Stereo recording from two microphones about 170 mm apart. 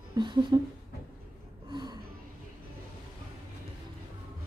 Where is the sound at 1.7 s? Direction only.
25° right (ahead or behind).